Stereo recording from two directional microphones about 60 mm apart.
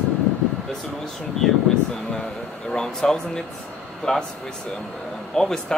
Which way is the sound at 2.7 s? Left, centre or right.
Centre.